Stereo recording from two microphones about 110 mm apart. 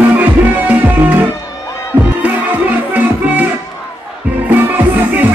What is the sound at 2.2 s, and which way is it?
Music, 15° right (ahead or behind).